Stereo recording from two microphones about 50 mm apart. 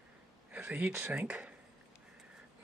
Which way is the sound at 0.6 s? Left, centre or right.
Right.